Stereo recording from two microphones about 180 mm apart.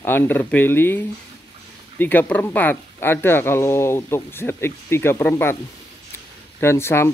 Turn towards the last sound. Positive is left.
turn(degrees=15)  # may be behind; listen again after turning